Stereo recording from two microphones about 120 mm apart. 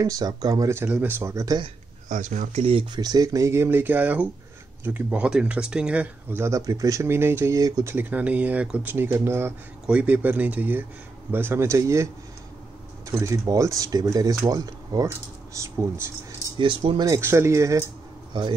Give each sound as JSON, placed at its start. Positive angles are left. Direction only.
{"t": 0.0, "sound": "speech", "side_deg": -30}
{"t": 0.8, "sound": "speech", "side_deg": -15}
{"t": 2.0, "sound": "speech", "side_deg": -90}
{"t": 3.0, "sound": "speech", "side_deg": -35}
{"t": 6.3, "sound": "speech", "side_deg": -25}
{"t": 7.9, "sound": "speech", "side_deg": -15}
{"t": 16.5, "sound": "speech", "side_deg": -40}
{"t": 17.1, "sound": "speech", "side_deg": -20}